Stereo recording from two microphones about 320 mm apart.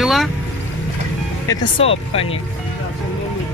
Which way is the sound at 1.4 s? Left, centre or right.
Centre.